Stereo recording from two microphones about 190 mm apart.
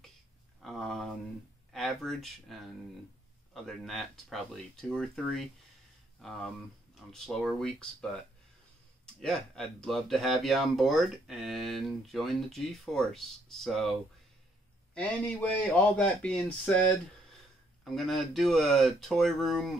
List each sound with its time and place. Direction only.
0.6 s a sound: centre (ahead or behind)
3.5 s speech: centre (ahead or behind)
7.1 s speech: centre (ahead or behind)
15.0 s speech: 5° left (ahead or behind)
17.8 s speech: centre (ahead or behind)